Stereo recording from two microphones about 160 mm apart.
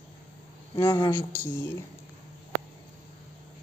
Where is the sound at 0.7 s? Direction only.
15° left (ahead or behind).